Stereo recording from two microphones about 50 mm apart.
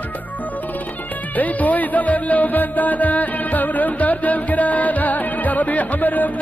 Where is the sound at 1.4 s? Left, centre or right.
Left.